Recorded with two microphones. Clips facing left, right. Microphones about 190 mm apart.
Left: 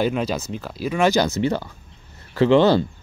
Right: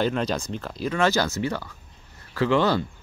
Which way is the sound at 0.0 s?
5° left (ahead or behind).